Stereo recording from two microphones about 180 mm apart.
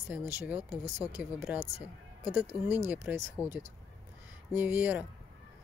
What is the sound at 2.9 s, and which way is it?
Speech, 10° right (ahead or behind).